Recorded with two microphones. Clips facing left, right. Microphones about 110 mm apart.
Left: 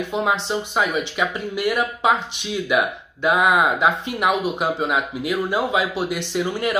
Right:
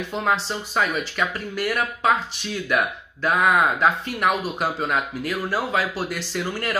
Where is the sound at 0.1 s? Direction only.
15° left (ahead or behind).